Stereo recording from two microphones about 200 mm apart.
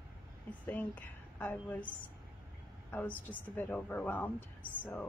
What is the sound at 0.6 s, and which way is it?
Speech, 10° left (ahead or behind).